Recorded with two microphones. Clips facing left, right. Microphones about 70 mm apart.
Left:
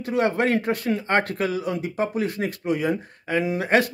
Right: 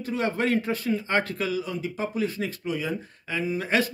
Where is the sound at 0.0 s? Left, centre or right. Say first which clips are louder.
Left 5 dB; left.